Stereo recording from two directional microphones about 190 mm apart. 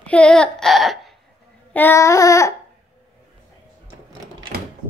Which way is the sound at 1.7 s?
10° left (ahead or behind).